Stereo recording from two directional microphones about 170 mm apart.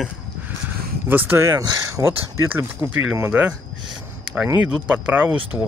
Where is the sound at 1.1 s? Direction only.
15° right (ahead or behind).